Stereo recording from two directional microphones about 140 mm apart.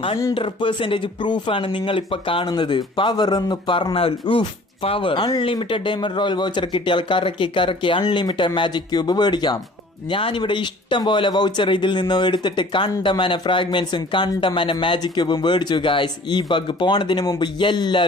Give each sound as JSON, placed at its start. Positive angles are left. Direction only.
{"t": 0.3, "sound": "speech", "side_deg": 35}